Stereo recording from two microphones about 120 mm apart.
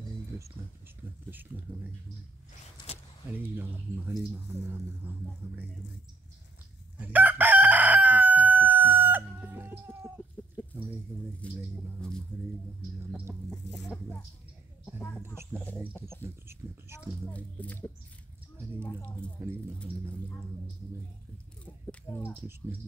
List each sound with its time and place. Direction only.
0.6 s hum: 20° right (ahead or behind)
3.3 s speech: 15° right (ahead or behind)
7.0 s chicken: 15° right (ahead or behind)
11.4 s speech: 10° left (ahead or behind)
13.0 s hum: 20° right (ahead or behind)
13.5 s speech: 5° left (ahead or behind)
15.0 s a woman's voice: 20° left (ahead or behind)
16.3 s hum: 25° right (ahead or behind)
16.6 s speech: 15° right (ahead or behind)
17.3 s speech: 10° left (ahead or behind)
18.9 s speech: 10° left (ahead or behind)
21.6 s speech: 20° left (ahead or behind)